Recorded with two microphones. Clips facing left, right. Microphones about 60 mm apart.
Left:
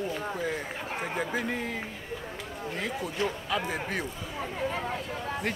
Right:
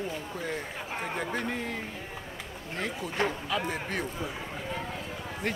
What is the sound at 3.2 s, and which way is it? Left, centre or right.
Speech, right.